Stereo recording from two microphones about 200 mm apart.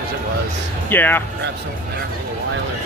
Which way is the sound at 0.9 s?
10° left (ahead or behind).